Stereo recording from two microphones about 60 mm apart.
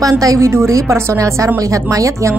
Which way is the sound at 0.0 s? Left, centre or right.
Right.